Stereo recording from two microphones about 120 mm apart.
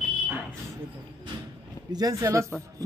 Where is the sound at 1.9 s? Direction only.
30° right (ahead or behind).